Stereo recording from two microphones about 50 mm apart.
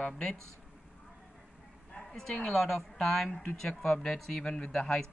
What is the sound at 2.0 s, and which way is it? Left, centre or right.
A woman's voice, centre.